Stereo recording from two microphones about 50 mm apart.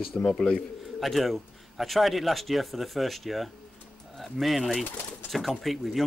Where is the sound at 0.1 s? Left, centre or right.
Centre.